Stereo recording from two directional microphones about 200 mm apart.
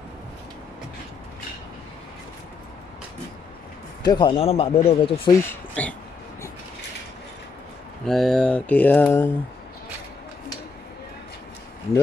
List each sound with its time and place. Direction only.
4.0 s speech: 20° left (ahead or behind)
5.4 s speech: 10° left (ahead or behind)
8.0 s speech: centre (ahead or behind)